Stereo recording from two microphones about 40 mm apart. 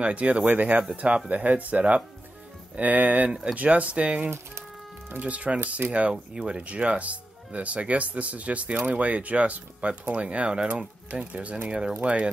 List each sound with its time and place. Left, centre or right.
0.0 s speech: right
3.3 s speech: centre
3.5 s speech: right
5.2 s speech: right